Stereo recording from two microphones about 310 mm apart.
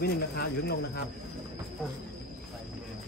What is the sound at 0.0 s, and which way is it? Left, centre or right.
Speech, left.